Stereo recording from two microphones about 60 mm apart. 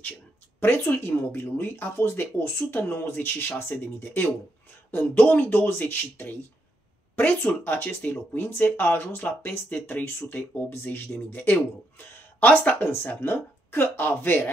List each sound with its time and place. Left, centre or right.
0.6 s speech: left
13.2 s speech: left